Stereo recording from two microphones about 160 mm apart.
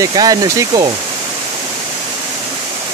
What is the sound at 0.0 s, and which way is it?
Speech, 25° right (ahead or behind).